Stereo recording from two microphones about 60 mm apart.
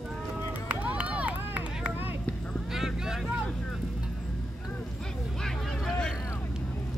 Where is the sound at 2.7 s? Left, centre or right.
Centre.